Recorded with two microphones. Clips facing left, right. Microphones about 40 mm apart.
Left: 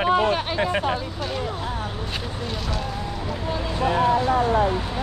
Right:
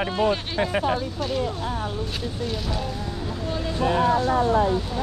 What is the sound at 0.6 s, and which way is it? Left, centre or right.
Speech, centre.